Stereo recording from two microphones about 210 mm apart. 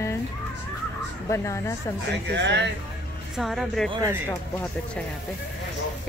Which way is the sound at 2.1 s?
55° right (ahead or behind).